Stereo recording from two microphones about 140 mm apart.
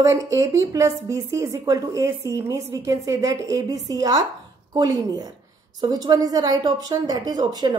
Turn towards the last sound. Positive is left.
turn(degrees=-30)  # may be behind; listen again after turning